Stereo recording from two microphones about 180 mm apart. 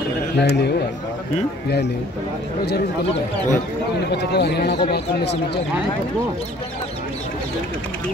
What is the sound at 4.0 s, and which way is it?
Speech, 65° left (ahead or behind).